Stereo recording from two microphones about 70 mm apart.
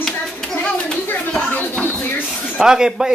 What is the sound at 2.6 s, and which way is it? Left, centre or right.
Speech, centre.